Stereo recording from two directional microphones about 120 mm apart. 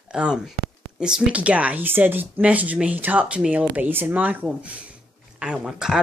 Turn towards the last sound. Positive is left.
turn(degrees=-5)  # may be behind; listen again after turning